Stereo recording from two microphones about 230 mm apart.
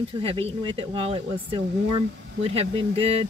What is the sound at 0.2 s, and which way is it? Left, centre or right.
Speech, right.